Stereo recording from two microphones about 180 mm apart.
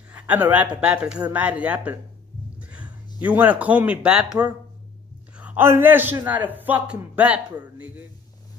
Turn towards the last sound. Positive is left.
turn(degrees=-10)  # may be behind; listen again after turning